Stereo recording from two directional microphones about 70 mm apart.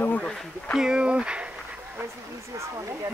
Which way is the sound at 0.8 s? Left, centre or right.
Centre.